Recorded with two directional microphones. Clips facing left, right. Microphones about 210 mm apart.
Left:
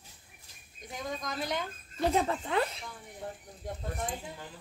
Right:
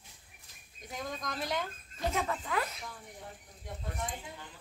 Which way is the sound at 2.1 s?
30° left (ahead or behind).